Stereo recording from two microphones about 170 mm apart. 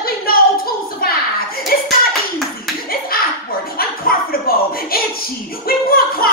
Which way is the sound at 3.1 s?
60° left (ahead or behind).